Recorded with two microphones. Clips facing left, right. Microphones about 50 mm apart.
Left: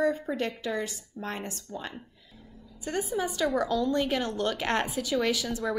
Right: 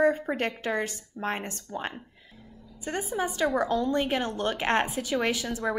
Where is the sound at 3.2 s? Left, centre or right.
Right.